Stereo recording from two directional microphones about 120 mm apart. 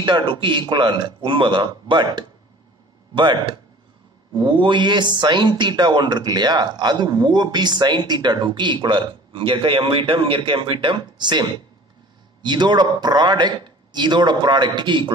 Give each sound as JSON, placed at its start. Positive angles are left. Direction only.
{"t": 0.0, "sound": "speech", "side_deg": -40}